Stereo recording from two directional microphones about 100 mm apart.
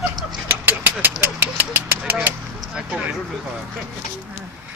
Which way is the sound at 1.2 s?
20° right (ahead or behind).